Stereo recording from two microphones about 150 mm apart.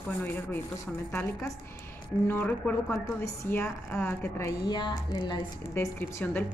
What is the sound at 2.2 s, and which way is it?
A woman's voice, 10° left (ahead or behind).